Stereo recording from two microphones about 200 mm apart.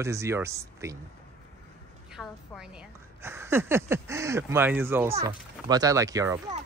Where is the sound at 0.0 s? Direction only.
15° right (ahead or behind).